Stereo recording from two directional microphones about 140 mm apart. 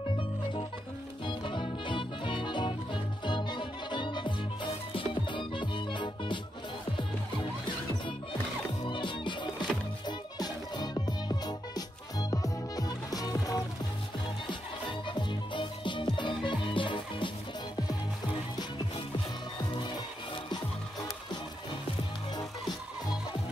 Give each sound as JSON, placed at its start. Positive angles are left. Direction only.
{"t": 0.1, "sound": "music", "side_deg": 35}
{"t": 8.8, "sound": "music", "side_deg": 35}